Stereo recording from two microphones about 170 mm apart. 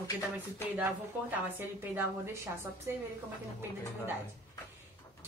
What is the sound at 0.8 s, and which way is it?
A woman's voice, 15° right (ahead or behind).